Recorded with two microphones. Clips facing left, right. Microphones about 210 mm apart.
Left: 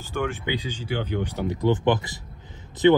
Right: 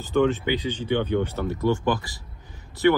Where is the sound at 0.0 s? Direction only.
15° left (ahead or behind).